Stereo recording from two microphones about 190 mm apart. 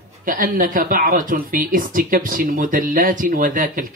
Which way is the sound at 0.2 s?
45° right (ahead or behind).